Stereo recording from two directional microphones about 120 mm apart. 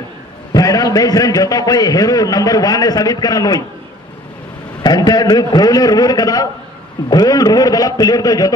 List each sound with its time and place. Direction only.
0.5 s a man's voice: 30° left (ahead or behind)
4.8 s a man's voice: 35° left (ahead or behind)